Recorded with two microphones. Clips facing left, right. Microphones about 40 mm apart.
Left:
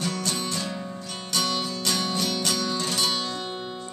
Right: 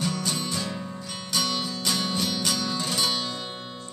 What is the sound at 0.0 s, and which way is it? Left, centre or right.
Music, centre.